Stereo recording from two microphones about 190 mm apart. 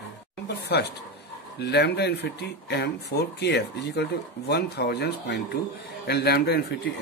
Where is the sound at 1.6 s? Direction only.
60° left (ahead or behind).